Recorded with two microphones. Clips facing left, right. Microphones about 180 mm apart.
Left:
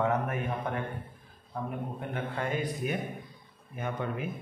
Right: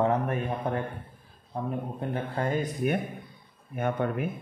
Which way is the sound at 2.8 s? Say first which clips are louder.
Right 5 dB; 55° right (ahead or behind).